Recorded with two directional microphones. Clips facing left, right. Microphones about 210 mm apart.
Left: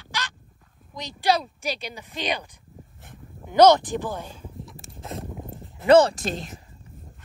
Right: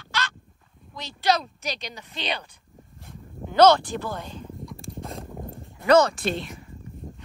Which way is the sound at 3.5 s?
15° left (ahead or behind).